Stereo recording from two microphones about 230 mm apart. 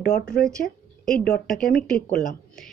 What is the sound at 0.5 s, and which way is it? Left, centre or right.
A woman's voice, centre.